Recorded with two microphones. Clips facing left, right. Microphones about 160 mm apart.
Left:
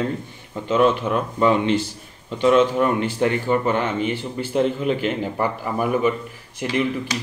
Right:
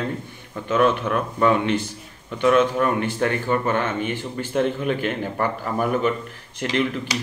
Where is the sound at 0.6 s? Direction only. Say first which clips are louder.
Left 1 dB; 20° left (ahead or behind).